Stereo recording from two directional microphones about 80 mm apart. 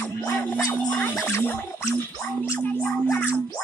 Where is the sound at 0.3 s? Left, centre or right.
Left.